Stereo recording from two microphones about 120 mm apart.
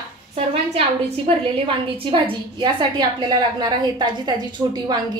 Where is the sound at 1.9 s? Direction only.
45° right (ahead or behind).